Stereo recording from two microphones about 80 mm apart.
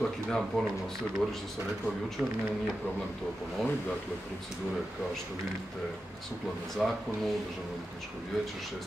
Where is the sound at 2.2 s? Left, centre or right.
Centre.